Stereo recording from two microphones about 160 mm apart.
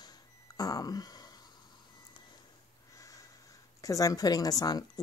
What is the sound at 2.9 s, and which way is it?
Snort, 20° left (ahead or behind).